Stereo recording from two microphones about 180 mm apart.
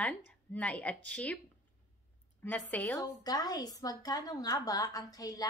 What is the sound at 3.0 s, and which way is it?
A woman's voice, 20° left (ahead or behind).